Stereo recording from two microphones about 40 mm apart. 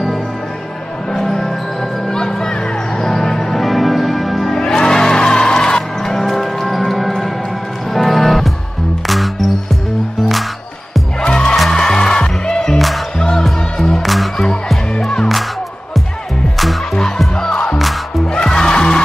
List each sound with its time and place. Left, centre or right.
1.1 s music: centre
4.6 s music: centre
11.1 s music: left
14.0 s music: centre
17.4 s music: centre
17.7 s music: centre
18.2 s music: centre